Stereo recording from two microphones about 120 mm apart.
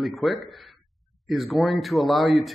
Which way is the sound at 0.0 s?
Centre (ahead or behind).